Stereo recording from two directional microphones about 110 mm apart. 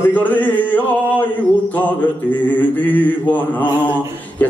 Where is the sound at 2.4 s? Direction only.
15° left (ahead or behind).